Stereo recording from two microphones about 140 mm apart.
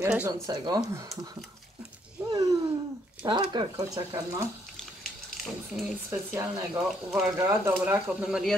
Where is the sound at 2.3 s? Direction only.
25° right (ahead or behind).